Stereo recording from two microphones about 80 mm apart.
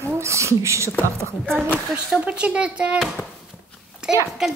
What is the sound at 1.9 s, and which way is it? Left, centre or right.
Speech, centre.